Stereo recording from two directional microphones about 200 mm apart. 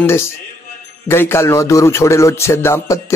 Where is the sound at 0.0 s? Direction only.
10° left (ahead or behind).